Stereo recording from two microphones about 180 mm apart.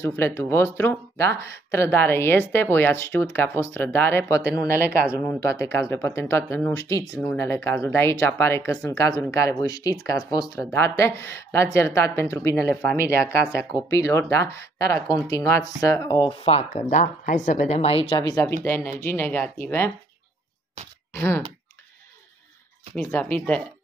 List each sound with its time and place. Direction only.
0.0 s a woman's voice: 15° left (ahead or behind)
21.1 s speech: 15° left (ahead or behind)
22.9 s a woman's voice: 10° left (ahead or behind)